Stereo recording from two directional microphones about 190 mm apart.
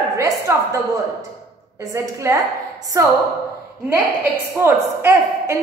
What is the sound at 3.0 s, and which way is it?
Speech, 15° right (ahead or behind).